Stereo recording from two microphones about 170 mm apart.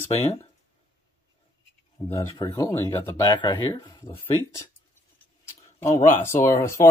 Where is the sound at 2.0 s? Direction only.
20° left (ahead or behind).